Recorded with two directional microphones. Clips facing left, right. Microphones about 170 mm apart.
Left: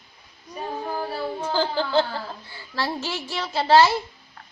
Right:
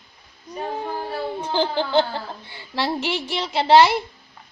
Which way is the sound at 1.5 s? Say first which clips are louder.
Right 2 dB; 25° right (ahead or behind).